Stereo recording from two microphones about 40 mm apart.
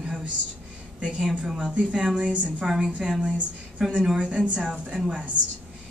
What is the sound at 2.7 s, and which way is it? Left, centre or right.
Speech, centre.